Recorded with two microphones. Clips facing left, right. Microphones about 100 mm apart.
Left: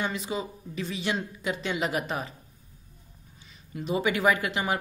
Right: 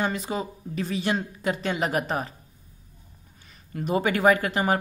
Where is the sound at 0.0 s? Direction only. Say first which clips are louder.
Right 3 dB; 45° right (ahead or behind).